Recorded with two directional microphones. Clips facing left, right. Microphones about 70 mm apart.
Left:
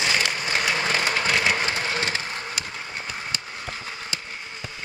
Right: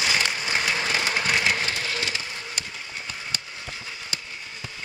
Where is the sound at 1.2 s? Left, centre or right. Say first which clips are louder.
Left 1 dB; centre.